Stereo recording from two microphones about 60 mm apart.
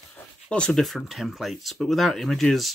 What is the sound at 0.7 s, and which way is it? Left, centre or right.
Speech, centre.